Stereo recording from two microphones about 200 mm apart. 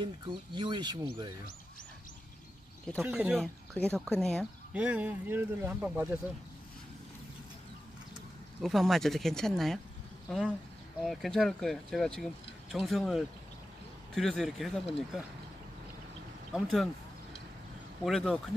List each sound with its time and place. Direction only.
0.0 s speech: 25° right (ahead or behind)
3.0 s speech: 5° right (ahead or behind)
8.5 s speech: centre (ahead or behind)
11.1 s speech: centre (ahead or behind)
16.5 s speech: centre (ahead or behind)
18.0 s speech: centre (ahead or behind)